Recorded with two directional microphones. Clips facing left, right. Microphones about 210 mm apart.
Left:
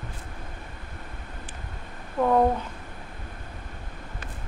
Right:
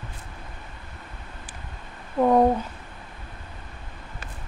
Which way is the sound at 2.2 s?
15° right (ahead or behind).